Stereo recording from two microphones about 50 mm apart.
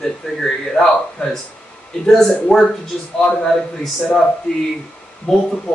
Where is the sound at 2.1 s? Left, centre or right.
Centre.